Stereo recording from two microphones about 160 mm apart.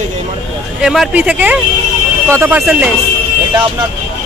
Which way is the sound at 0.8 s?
Centre (ahead or behind).